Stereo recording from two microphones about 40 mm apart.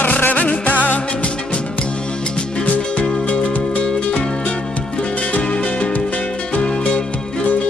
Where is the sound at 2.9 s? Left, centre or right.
Left.